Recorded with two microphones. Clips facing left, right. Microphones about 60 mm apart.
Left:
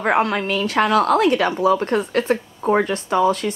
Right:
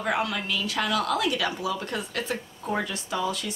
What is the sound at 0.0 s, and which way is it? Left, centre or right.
Speech, left.